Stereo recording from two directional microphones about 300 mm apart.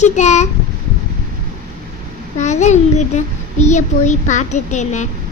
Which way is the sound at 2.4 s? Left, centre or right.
Left.